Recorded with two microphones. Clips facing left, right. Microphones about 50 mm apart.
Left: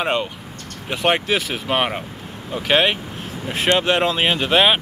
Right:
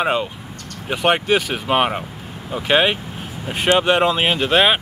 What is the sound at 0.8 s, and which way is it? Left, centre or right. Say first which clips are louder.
Speech: right 2 dB; centre.